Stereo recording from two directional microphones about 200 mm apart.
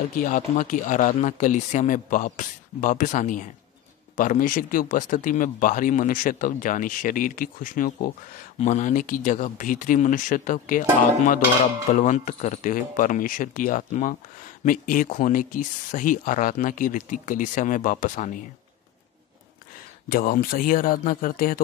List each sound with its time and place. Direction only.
0.1 s speech: 40° left (ahead or behind)
11.9 s speech: 35° left (ahead or behind)
20.1 s speech: 45° left (ahead or behind)